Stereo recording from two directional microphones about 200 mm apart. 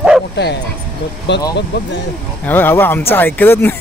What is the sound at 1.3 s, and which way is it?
Speech, 60° left (ahead or behind).